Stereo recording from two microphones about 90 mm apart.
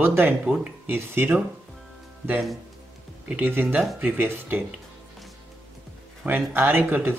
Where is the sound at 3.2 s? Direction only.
20° right (ahead or behind).